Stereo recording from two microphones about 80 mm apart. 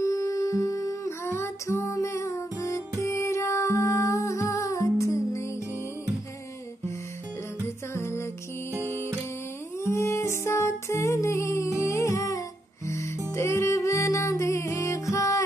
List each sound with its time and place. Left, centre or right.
0.0 s music: left
7.6 s music: left
9.8 s humming: left
13.3 s music: left